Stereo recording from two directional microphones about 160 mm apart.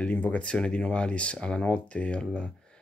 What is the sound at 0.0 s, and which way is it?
Speech, 10° left (ahead or behind).